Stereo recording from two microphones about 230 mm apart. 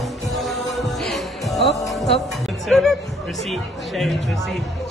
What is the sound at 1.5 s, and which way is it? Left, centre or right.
Music, centre.